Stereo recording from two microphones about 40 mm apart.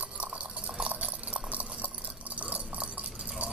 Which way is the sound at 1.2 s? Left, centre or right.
Right.